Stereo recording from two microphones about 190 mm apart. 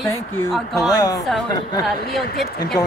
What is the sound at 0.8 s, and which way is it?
Speech, 20° left (ahead or behind).